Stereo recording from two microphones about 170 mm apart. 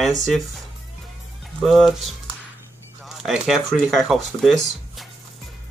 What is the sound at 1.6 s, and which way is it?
Speech, centre (ahead or behind).